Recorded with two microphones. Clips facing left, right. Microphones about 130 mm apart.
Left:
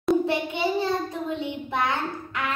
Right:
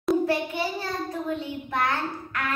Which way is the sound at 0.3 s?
25° left (ahead or behind).